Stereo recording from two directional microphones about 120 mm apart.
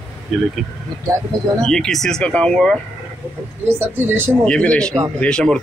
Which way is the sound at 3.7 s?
15° right (ahead or behind).